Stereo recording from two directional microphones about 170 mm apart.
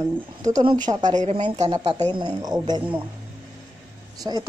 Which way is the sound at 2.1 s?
25° right (ahead or behind).